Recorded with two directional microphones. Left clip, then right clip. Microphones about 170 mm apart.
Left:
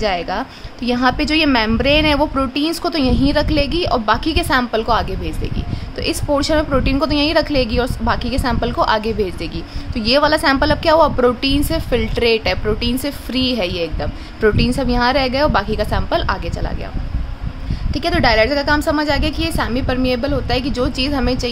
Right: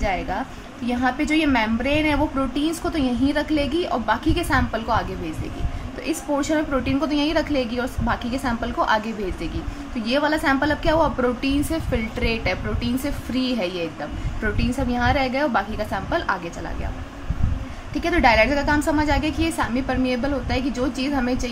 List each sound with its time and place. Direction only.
0.0 s a woman's voice: 50° left (ahead or behind)
6.0 s a woman's voice: 55° left (ahead or behind)
17.9 s a woman's voice: 50° left (ahead or behind)